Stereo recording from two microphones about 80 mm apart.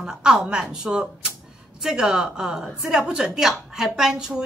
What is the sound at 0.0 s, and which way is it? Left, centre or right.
A woman's voice, centre.